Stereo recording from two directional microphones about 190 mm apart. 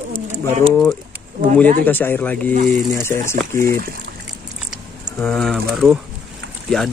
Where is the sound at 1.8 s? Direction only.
10° left (ahead or behind).